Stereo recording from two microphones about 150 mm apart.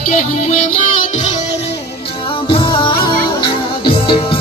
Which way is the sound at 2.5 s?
35° left (ahead or behind).